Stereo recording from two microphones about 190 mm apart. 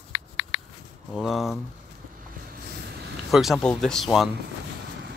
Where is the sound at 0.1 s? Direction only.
75° left (ahead or behind).